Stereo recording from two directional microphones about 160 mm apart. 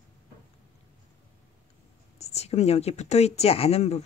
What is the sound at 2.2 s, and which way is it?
Speech, 40° left (ahead or behind).